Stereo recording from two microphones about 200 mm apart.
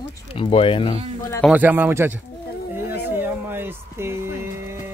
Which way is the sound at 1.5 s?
10° right (ahead or behind).